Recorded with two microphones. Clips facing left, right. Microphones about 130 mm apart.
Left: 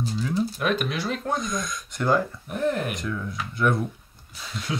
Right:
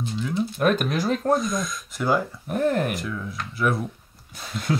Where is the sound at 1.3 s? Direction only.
Centre (ahead or behind).